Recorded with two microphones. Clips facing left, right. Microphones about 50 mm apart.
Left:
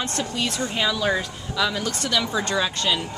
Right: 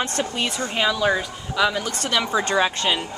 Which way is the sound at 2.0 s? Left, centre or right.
Right.